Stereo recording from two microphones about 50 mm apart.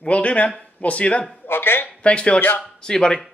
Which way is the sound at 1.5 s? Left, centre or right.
Left.